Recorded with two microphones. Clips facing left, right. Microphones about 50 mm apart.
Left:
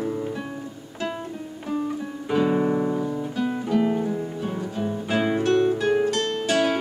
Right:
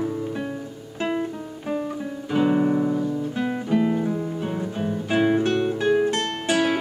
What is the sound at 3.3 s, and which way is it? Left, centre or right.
Guitar, centre.